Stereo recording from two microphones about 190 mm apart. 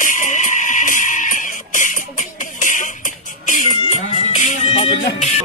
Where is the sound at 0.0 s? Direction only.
40° left (ahead or behind).